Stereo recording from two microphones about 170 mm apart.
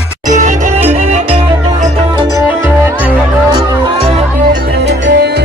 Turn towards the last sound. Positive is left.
turn(degrees=-85)